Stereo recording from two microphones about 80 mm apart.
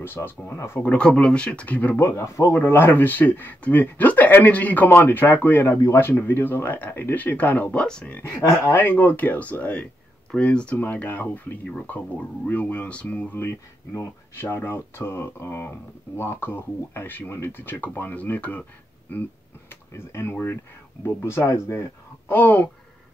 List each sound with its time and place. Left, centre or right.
0.0 s speech: left
0.8 s speech: centre
2.0 s speech: left
2.5 s speech: left
8.2 s speech: left
13.5 s speech: left
19.7 s speech: left
21.2 s speech: left
22.3 s speech: left